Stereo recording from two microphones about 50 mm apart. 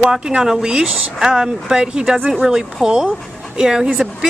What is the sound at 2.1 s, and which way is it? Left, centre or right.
Speech, right.